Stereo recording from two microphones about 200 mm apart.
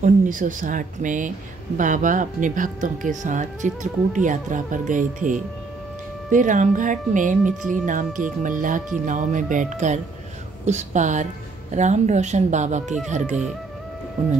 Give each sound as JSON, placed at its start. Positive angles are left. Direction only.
{"t": 0.0, "sound": "speech", "side_deg": -40}